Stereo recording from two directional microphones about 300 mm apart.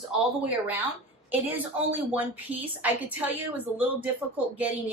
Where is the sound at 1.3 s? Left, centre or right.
Centre.